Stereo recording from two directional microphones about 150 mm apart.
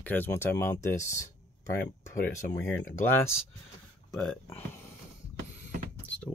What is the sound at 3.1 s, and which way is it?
Speech, 15° left (ahead or behind).